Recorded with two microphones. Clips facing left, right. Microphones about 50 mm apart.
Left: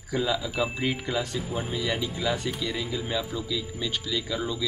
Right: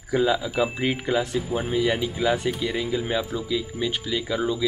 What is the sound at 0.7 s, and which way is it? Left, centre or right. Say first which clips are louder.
Speech: right 4 dB; centre.